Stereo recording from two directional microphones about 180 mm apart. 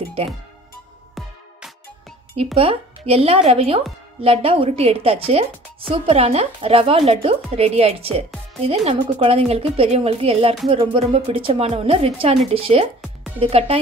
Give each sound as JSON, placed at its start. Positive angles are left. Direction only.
{"t": 2.3, "sound": "a woman's voice", "side_deg": -30}